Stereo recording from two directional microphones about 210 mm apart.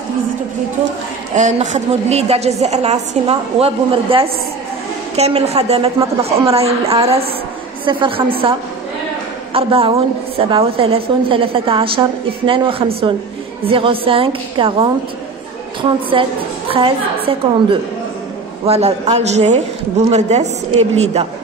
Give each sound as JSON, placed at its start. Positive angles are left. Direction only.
{"t": 1.3, "sound": "a woman's voice", "side_deg": -35}